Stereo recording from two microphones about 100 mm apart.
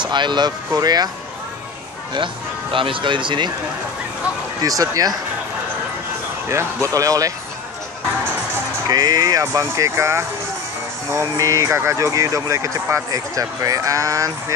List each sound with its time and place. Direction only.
0.0 s speech: 50° right (ahead or behind)
2.1 s speech: 60° right (ahead or behind)
4.6 s speech: 35° right (ahead or behind)
6.5 s speech: 30° right (ahead or behind)
8.8 s speech: 40° right (ahead or behind)